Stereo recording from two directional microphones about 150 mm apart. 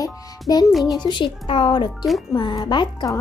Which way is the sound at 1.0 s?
30° left (ahead or behind).